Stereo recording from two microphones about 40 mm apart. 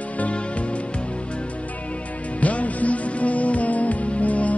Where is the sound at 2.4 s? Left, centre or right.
Left.